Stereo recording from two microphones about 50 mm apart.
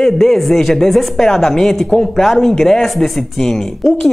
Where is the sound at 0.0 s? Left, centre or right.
Centre.